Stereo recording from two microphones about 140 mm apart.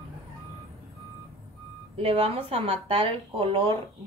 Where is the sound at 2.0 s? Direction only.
45° right (ahead or behind).